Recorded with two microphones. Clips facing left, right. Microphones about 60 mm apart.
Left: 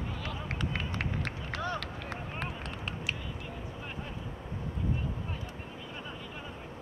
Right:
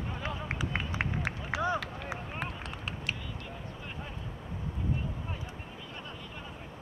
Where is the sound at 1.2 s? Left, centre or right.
Centre.